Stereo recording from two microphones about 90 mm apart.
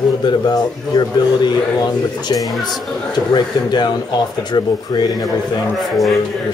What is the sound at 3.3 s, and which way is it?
Speech, 55° left (ahead or behind).